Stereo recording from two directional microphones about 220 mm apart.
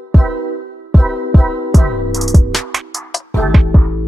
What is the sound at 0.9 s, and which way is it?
Music, centre (ahead or behind).